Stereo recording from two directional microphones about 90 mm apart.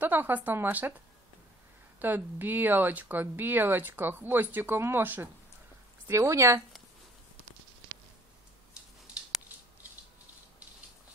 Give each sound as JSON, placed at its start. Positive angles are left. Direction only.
{"t": 0.0, "sound": "speech", "side_deg": -20}
{"t": 2.0, "sound": "speech", "side_deg": -20}
{"t": 6.0, "sound": "speech", "side_deg": -35}